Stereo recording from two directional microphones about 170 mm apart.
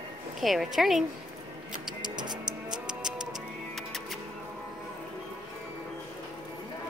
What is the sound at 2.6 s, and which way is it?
Livestock, 5° right (ahead or behind).